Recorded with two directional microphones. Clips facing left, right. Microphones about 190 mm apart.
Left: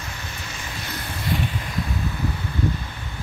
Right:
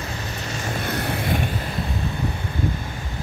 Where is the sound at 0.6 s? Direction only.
55° right (ahead or behind).